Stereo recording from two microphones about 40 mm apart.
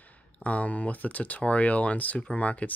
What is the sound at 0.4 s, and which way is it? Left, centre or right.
Speech, left.